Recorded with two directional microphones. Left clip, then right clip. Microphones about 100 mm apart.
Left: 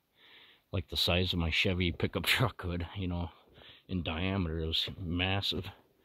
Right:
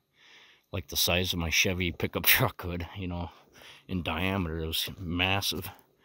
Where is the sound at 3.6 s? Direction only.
90° right.